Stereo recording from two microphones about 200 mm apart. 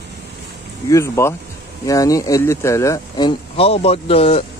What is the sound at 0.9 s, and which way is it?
Speech, 15° left (ahead or behind).